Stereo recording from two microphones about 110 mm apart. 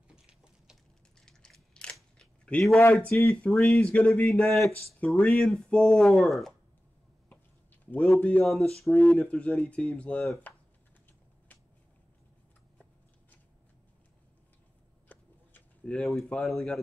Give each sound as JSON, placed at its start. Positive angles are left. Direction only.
{"t": 0.1, "sound": "a sound", "side_deg": -10}
{"t": 1.2, "sound": "biting", "side_deg": 5}
{"t": 3.1, "sound": "speech", "side_deg": 15}
{"t": 3.5, "sound": "speech", "side_deg": 5}
{"t": 7.2, "sound": "typing", "side_deg": 15}
{"t": 8.2, "sound": "speech", "side_deg": 10}
{"t": 15.0, "sound": "a sound", "side_deg": 10}
{"t": 16.2, "sound": "speech", "side_deg": 5}